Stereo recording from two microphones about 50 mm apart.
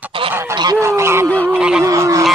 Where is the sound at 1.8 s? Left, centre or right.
Right.